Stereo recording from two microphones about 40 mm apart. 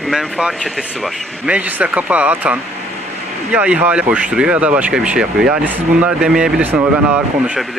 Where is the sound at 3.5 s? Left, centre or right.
Right.